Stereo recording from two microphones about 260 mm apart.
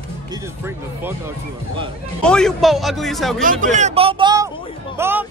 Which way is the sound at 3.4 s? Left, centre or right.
Right.